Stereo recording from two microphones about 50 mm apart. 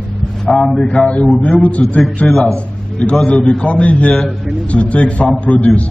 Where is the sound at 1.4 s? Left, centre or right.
Left.